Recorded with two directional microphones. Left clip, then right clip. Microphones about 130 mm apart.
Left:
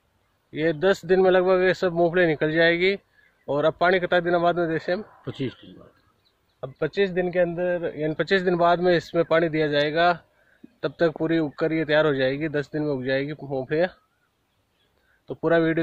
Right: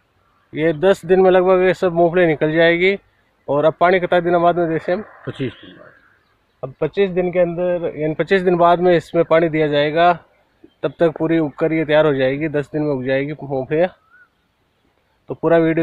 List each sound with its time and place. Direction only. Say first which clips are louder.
0.5 s speech: right 6 dB; 10° right (ahead or behind)
5.2 s speech: right 5 dB; 30° left (ahead or behind)
6.6 s a man's voice: right 6 dB; centre (ahead or behind)
15.2 s a man's voice: right 6 dB; 5° right (ahead or behind)